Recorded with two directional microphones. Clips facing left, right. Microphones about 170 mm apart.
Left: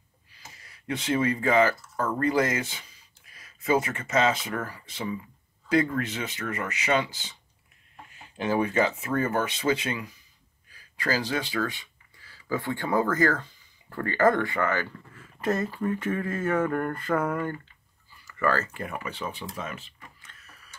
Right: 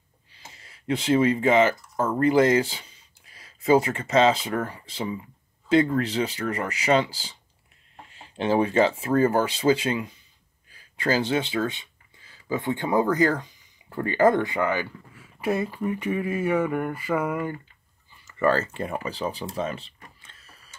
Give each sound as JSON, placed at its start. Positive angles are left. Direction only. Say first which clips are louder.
{"t": 0.3, "sound": "speech", "louder": "right 2 dB", "side_deg": -25}
{"t": 15.4, "sound": "a sound", "louder": "right 1 dB", "side_deg": -10}
{"t": 18.1, "sound": "speech", "louder": "right 4 dB", "side_deg": -25}